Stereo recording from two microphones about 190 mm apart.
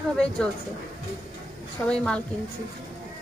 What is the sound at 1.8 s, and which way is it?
Speech, 5° left (ahead or behind).